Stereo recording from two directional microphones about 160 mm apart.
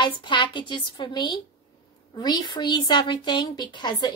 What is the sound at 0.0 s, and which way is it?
A woman's voice, 30° left (ahead or behind).